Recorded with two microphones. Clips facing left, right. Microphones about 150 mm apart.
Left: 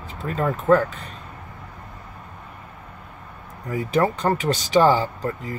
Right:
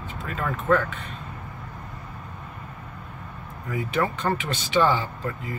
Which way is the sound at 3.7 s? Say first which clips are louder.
Left 5 dB; 35° left (ahead or behind).